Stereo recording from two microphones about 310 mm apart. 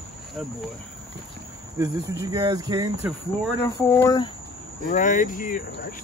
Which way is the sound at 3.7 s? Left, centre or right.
Centre.